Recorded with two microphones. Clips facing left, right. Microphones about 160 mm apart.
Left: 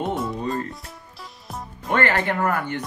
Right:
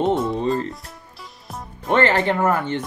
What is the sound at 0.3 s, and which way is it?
Music, 25° right (ahead or behind).